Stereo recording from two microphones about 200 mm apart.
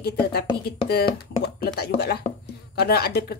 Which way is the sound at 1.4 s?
50° left (ahead or behind).